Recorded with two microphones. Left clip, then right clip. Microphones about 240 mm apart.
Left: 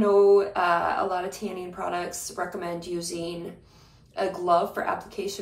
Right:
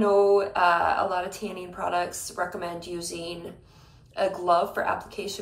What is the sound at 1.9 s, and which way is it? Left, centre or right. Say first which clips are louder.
Speech: right 6 dB; centre.